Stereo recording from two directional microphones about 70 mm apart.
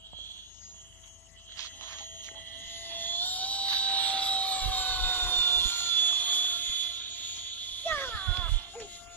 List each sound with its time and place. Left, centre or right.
2.6 s jet engine: left